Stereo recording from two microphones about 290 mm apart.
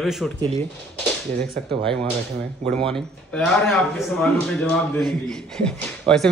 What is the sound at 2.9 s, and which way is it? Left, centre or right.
Speech, centre.